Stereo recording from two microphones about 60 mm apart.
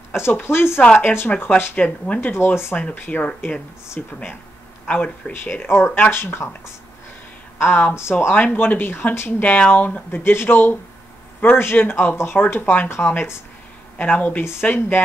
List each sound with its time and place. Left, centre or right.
0.2 s speech: left
3.1 s speech: left
5.3 s speech: left
7.5 s speech: left
8.4 s speech: left
10.3 s speech: left